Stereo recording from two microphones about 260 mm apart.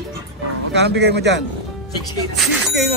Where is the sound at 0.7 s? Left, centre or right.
Right.